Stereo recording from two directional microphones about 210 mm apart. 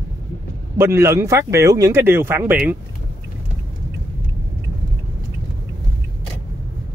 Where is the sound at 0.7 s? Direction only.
10° right (ahead or behind).